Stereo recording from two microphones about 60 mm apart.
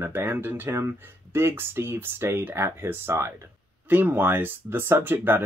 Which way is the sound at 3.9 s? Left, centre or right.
Right.